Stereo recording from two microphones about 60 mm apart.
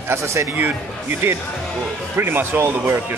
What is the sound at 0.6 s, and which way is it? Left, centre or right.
Speech, right.